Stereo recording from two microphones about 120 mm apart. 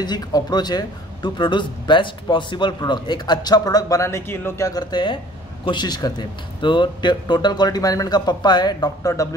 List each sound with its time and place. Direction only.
0.0 s speech: 35° left (ahead or behind)